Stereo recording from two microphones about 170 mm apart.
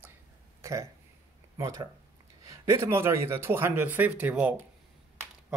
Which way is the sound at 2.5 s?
15° right (ahead or behind).